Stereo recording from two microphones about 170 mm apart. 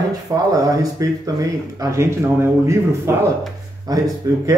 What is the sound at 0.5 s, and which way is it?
Speech, 20° right (ahead or behind).